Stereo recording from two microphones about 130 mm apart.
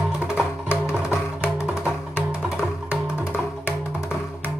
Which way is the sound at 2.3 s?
5° right (ahead or behind).